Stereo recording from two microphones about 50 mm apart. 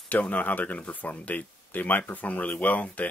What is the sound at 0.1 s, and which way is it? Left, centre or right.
Speech, left.